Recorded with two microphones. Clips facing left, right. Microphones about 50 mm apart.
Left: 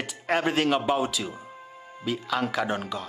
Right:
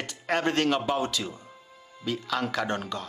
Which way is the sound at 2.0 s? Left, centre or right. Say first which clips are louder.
Left 2 dB; centre.